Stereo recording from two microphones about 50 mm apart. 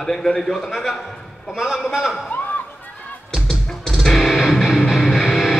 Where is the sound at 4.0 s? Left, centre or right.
Centre.